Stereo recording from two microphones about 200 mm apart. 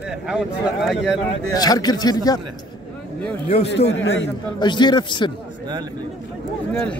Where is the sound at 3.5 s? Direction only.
30° left (ahead or behind).